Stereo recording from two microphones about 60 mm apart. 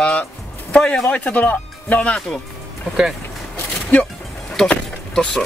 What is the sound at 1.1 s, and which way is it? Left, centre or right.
Speech, left.